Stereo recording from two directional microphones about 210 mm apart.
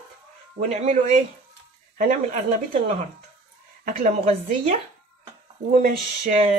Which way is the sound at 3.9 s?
40° right (ahead or behind).